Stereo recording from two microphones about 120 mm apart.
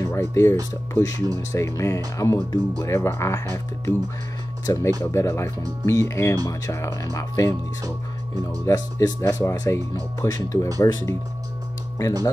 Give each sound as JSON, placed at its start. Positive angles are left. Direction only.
{"t": 0.0, "sound": "speech", "side_deg": 25}
{"t": 8.6, "sound": "speech", "side_deg": 30}